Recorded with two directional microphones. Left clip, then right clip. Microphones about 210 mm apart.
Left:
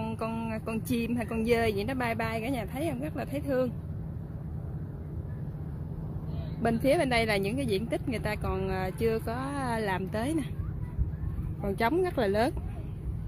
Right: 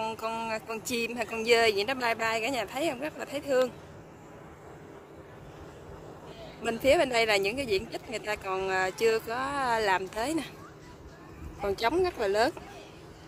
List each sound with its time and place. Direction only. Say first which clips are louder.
0.0 s speech: right 3 dB; centre (ahead or behind)
6.6 s speech: right 2 dB; centre (ahead or behind)
11.6 s speech: right 1 dB; centre (ahead or behind)